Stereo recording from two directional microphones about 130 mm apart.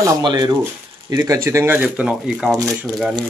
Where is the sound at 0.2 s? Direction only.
35° right (ahead or behind); by 2.0 s 15° right (ahead or behind).